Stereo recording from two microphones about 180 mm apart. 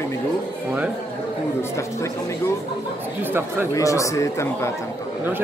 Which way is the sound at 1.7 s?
15° left (ahead or behind).